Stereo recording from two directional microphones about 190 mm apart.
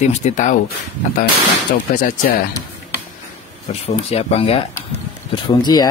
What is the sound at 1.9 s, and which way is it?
Speech, 50° left (ahead or behind).